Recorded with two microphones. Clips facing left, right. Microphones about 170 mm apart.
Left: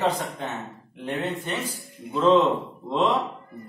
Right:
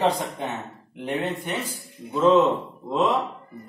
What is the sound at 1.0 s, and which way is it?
Speech, 20° right (ahead or behind).